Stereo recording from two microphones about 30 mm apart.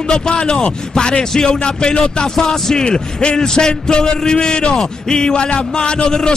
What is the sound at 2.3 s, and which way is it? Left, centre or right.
Speech, centre.